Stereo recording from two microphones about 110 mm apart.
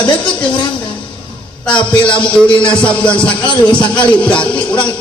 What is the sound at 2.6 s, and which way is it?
Music, 10° left (ahead or behind).